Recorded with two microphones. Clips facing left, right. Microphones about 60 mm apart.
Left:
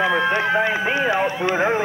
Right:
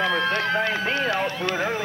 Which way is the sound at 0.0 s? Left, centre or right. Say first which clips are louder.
Left 4 dB; centre.